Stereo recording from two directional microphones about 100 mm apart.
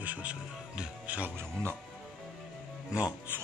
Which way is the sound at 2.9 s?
10° right (ahead or behind).